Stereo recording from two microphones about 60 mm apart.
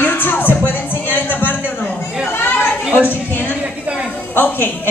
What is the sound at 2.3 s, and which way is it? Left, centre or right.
Chatter, left.